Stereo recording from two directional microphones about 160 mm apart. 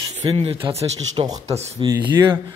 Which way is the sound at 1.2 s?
30° right (ahead or behind).